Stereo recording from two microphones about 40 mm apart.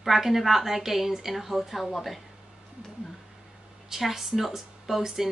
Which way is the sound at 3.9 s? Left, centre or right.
Centre.